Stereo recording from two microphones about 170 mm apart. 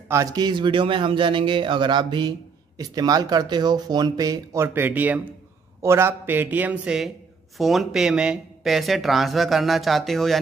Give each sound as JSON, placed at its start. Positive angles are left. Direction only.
{"t": 0.1, "sound": "speech", "side_deg": -20}